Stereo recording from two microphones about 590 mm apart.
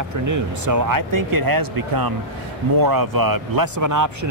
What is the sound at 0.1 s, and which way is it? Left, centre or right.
Speech, right.